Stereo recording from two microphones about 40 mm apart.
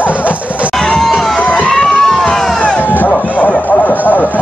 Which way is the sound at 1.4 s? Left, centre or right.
Left.